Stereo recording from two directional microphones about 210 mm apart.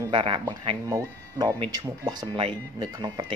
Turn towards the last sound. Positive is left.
turn(degrees=-20)  # may be behind; listen again after turning